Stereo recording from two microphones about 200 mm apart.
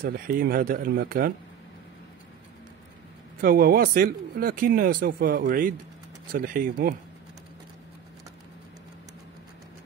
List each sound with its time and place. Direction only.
0.0 s speech: 50° right (ahead or behind)
3.3 s speech: 45° right (ahead or behind)